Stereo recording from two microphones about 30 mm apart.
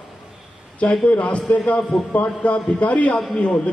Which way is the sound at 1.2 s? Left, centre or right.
Left.